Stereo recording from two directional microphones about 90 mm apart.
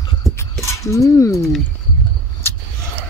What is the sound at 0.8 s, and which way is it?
Speech, 35° left (ahead or behind).